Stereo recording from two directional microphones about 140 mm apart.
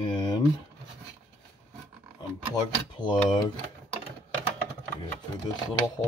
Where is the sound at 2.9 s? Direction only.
30° left (ahead or behind).